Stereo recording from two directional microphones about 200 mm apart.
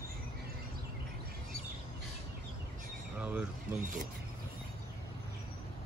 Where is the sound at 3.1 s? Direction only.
5° right (ahead or behind).